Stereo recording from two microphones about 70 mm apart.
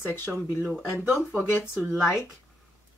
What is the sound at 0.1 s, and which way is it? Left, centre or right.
Speech, left.